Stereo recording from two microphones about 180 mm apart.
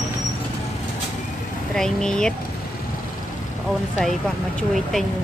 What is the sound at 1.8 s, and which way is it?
Speech, 5° left (ahead or behind).